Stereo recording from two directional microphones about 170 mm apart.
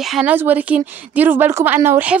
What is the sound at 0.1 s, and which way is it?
Speech, 5° right (ahead or behind).